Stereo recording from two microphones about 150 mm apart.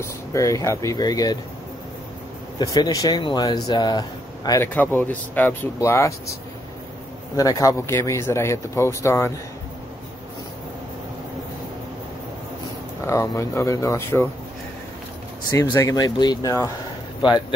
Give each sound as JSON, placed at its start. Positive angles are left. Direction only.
{"t": 0.0, "sound": "speech", "side_deg": 20}
{"t": 2.6, "sound": "speech", "side_deg": 25}
{"t": 4.5, "sound": "speech", "side_deg": 15}
{"t": 7.3, "sound": "speech", "side_deg": 25}
{"t": 13.0, "sound": "speech", "side_deg": 20}
{"t": 15.5, "sound": "speech", "side_deg": 20}